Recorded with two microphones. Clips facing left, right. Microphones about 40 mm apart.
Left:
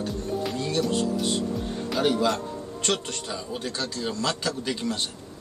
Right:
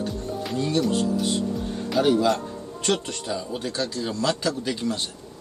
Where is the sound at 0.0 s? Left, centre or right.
Centre.